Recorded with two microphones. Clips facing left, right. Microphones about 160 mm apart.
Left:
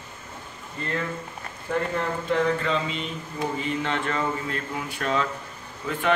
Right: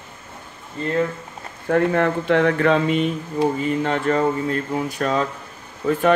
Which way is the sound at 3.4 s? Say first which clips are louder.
Right 7 dB; 40° right (ahead or behind).